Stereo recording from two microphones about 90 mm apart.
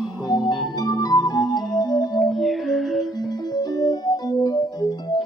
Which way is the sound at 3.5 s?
45° left (ahead or behind).